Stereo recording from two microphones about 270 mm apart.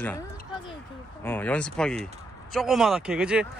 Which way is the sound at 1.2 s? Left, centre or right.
Centre.